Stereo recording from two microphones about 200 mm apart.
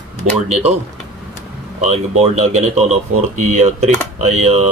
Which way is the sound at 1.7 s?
30° right (ahead or behind).